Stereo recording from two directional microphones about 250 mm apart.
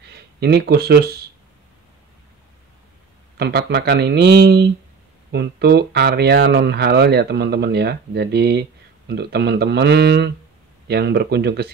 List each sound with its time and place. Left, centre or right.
0.1 s speech: right
3.3 s speech: right